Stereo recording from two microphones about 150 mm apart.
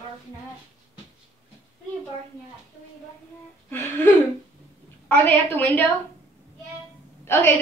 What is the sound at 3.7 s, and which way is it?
A woman's voice, 15° left (ahead or behind).